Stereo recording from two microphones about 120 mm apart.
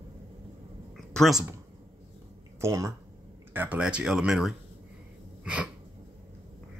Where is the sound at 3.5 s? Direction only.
15° right (ahead or behind).